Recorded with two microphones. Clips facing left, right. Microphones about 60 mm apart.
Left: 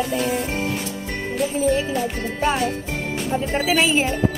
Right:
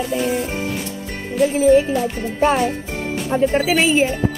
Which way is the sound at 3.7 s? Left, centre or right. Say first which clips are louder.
Right 2 dB; centre.